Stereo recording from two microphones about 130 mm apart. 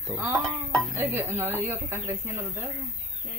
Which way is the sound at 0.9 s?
20° right (ahead or behind).